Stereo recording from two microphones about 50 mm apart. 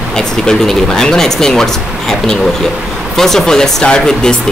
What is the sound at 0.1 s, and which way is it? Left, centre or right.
Speech, centre.